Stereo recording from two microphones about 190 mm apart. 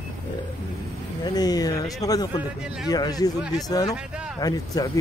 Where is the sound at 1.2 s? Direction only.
20° left (ahead or behind).